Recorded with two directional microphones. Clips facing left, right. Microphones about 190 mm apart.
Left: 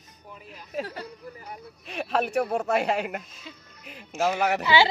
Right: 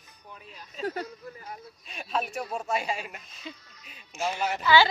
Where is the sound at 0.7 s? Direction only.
65° left (ahead or behind).